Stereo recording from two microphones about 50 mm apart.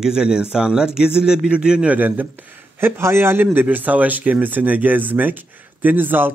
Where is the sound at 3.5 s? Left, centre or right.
Right.